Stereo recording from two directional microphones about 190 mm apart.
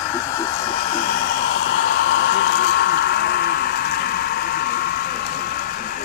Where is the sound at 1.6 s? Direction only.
65° left (ahead or behind).